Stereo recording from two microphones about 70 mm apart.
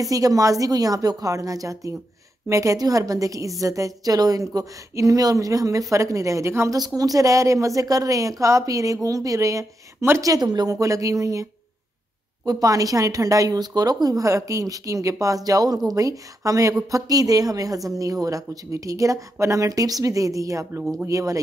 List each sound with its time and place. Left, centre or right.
0.0 s a woman's voice: right
6.7 s a woman's voice: right
10.2 s speech: right
10.8 s a woman's voice: right
12.4 s a woman's voice: right